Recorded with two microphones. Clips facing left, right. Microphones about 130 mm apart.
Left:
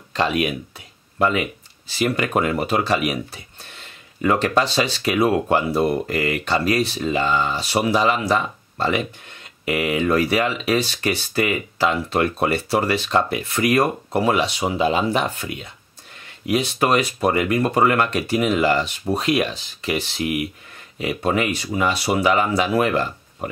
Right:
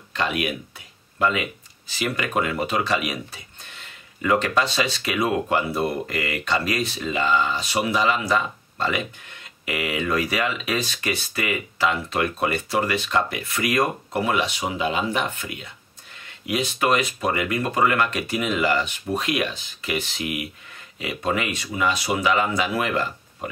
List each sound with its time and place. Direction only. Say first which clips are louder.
0.1 s speech: left 5 dB; 35° left (ahead or behind)
2.0 s speech: left 4 dB; 40° left (ahead or behind)
4.2 s speech: left 2 dB; 35° left (ahead or behind)